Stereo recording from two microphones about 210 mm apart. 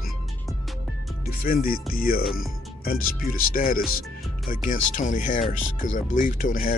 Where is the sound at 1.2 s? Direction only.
45° left (ahead or behind).